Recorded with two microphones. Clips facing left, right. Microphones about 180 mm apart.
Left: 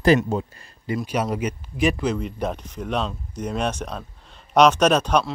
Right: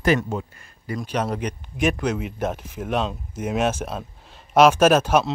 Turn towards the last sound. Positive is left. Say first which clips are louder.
# right 2 dB
turn(degrees=-5)  # may be behind; listen again after turning